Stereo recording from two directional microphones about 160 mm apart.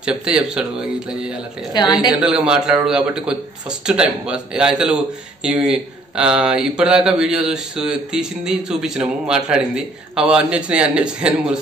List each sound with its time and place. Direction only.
0.0 s speech: 5° right (ahead or behind)
1.7 s a woman's voice: 25° left (ahead or behind)
2.0 s a man's voice: 5° right (ahead or behind)